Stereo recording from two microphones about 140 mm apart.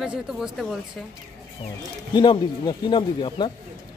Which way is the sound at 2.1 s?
30° left (ahead or behind).